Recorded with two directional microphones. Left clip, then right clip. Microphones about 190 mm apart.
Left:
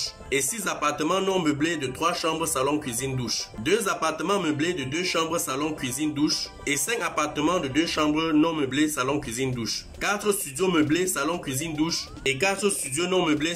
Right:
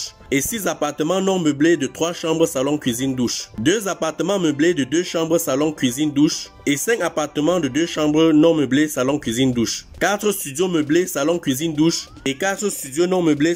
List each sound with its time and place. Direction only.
0.3 s speech: 40° right (ahead or behind)